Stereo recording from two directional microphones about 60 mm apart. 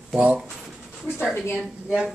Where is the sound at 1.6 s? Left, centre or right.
Centre.